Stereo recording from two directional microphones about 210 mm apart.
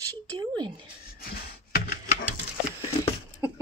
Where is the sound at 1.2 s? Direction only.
45° left (ahead or behind).